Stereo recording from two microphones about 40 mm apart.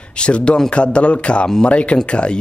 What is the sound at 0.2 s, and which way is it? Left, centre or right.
Speech, left.